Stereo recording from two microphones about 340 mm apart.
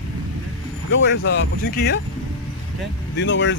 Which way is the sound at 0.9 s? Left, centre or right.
Left.